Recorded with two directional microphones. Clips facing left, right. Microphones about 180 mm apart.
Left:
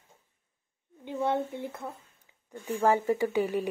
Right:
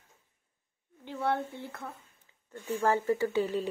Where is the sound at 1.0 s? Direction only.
20° left (ahead or behind).